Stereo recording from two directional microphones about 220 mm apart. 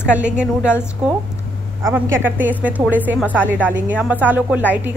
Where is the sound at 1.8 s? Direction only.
10° right (ahead or behind).